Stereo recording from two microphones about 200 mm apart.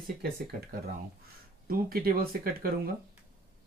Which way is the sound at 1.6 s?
45° right (ahead or behind).